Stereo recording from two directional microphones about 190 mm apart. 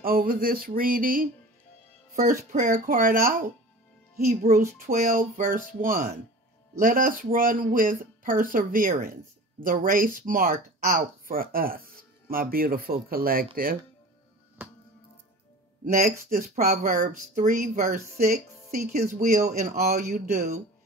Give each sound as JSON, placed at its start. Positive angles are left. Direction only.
{"t": 0.0, "sound": "speech", "side_deg": -50}
{"t": 2.5, "sound": "speech", "side_deg": -45}
{"t": 15.8, "sound": "speech", "side_deg": -50}